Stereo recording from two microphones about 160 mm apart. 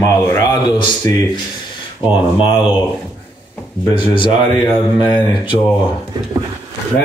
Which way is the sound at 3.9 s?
30° left (ahead or behind).